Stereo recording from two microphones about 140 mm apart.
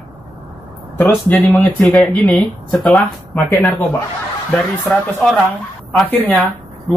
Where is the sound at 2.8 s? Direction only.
10° left (ahead or behind).